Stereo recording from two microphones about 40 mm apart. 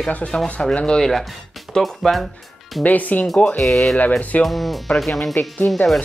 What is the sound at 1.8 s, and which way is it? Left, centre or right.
Speech, centre.